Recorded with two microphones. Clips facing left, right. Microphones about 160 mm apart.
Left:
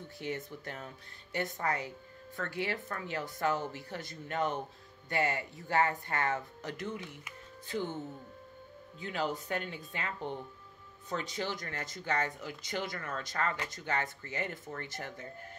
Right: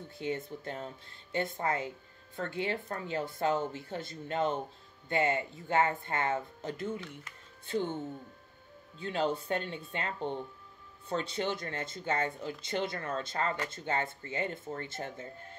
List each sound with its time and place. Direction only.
0.2 s speech: 25° right (ahead or behind)
9.0 s speech: 30° right (ahead or behind)